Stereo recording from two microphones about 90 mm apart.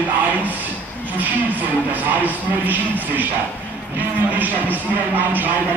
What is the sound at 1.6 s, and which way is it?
Speech, 20° right (ahead or behind).